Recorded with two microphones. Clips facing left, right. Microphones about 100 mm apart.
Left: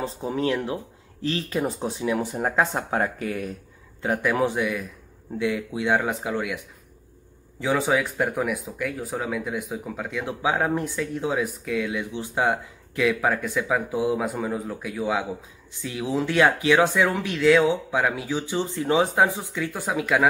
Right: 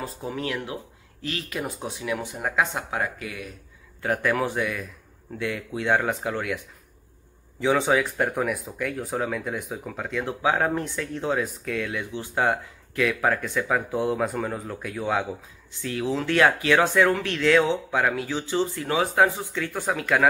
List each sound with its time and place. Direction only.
0.0 s speech: 30° left (ahead or behind)
4.0 s a man's voice: 20° left (ahead or behind)
7.6 s speech: centre (ahead or behind)
15.8 s speech: 15° left (ahead or behind)